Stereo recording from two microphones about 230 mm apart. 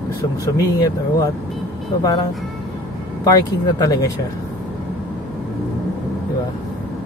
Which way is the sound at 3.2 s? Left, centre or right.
Centre.